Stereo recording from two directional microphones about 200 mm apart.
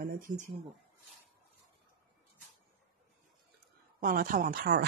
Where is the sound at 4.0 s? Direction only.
45° right (ahead or behind).